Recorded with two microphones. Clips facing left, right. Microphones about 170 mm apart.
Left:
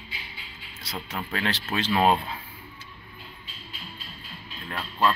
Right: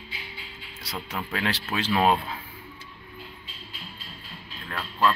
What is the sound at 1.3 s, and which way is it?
Speech, 10° right (ahead or behind).